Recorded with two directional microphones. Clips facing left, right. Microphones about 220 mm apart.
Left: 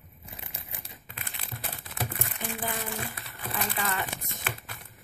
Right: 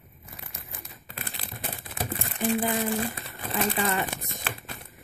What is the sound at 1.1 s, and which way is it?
Crumpling, 35° right (ahead or behind).